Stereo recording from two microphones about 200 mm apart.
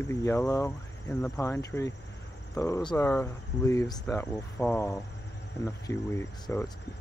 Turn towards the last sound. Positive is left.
turn(degrees=15)  # may be behind; listen again after turning